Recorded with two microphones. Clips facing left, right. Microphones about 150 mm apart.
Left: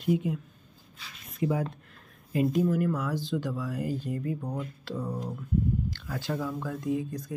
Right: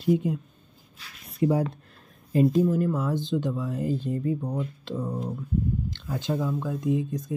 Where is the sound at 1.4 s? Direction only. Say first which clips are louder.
Right 5 dB; 40° right (ahead or behind).